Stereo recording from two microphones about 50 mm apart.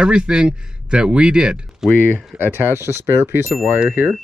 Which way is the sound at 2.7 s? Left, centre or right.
Right.